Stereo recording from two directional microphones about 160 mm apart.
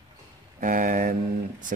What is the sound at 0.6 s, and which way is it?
Speech, 55° right (ahead or behind).